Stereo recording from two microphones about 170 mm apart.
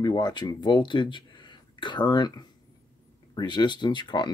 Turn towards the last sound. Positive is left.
turn(degrees=25)  # may be behind; listen again after turning